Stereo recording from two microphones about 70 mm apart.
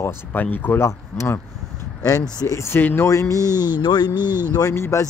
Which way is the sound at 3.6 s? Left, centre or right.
Left.